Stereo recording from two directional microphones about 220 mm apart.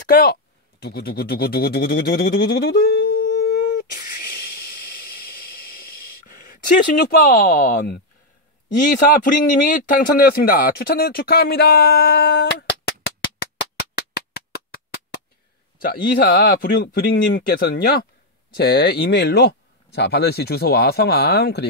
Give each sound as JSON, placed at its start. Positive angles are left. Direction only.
{"t": 0.0, "sound": "speech", "side_deg": 40}
{"t": 4.2, "sound": "hiss", "side_deg": 45}
{"t": 8.6, "sound": "a man's voice", "side_deg": 40}
{"t": 13.6, "sound": "music", "side_deg": 50}
{"t": 15.8, "sound": "a man's voice", "side_deg": 40}